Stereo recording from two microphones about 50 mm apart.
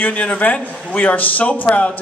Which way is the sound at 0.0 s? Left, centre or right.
Left.